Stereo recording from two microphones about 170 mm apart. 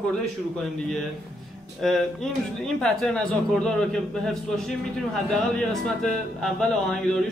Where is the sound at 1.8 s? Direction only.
5° left (ahead or behind).